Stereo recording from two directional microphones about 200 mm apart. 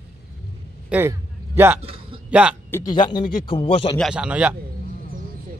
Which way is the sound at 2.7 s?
20° left (ahead or behind).